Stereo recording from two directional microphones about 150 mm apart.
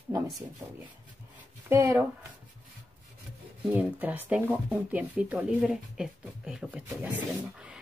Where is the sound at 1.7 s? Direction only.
15° right (ahead or behind).